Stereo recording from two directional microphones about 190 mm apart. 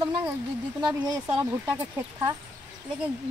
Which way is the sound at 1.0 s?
15° right (ahead or behind).